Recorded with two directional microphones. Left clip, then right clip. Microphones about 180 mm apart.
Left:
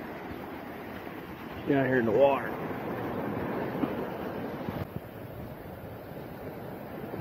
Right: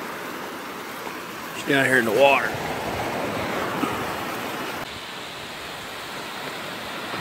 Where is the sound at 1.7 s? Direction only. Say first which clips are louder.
Right 7 dB; 40° right (ahead or behind).